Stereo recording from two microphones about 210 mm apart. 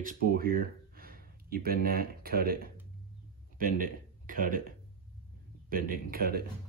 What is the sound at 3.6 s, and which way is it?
A man's voice, 40° right (ahead or behind).